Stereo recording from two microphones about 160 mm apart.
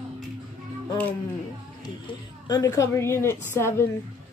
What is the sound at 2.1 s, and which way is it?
A woman's voice, 25° left (ahead or behind).